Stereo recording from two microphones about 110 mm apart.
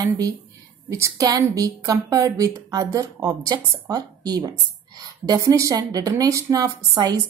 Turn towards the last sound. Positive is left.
turn(degrees=-35)  # may be behind; listen again after turning